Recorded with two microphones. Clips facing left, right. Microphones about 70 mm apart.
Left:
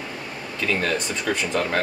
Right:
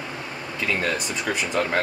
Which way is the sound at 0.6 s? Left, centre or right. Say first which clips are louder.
Left 1 dB; centre.